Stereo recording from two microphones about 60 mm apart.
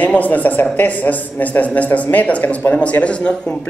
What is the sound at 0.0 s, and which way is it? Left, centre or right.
Speech, left.